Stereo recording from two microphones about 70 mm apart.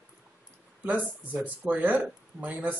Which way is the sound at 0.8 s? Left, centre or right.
Right.